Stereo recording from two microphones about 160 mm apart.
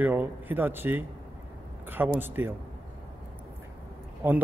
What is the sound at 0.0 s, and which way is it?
Speech, 10° right (ahead or behind).